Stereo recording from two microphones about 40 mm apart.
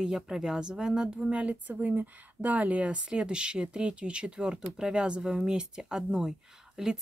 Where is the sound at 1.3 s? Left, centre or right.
Right.